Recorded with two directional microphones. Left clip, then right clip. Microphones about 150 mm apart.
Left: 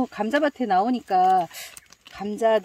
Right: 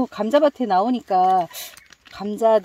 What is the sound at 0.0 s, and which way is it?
Speech, 30° right (ahead or behind).